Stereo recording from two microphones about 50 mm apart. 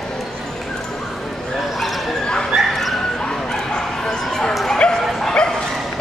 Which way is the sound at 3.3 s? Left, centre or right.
Centre.